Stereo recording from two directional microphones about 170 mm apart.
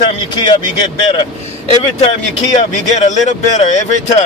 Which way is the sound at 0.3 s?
25° left (ahead or behind).